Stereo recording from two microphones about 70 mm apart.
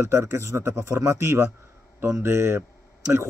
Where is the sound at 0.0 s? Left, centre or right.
Right.